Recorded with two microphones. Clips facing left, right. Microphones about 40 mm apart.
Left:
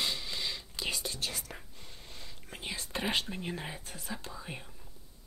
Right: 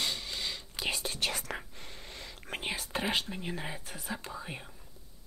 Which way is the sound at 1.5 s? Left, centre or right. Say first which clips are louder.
Right 7 dB; right.